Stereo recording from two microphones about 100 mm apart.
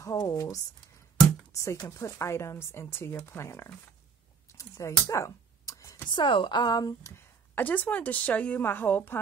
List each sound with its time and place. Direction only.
0.0 s speech: 35° left (ahead or behind)
4.6 s a sound: 30° left (ahead or behind)
6.1 s a woman's voice: 55° left (ahead or behind); by 7.2 s 35° left (ahead or behind)
7.5 s a woman's voice: 15° left (ahead or behind)